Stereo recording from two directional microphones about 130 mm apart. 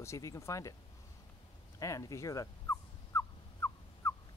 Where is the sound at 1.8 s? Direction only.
25° left (ahead or behind).